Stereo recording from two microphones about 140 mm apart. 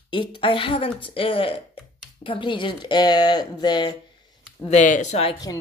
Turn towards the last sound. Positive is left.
turn(degrees=25)  # may be behind; listen again after turning